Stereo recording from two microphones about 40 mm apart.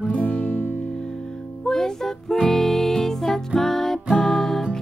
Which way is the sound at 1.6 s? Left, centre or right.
Centre.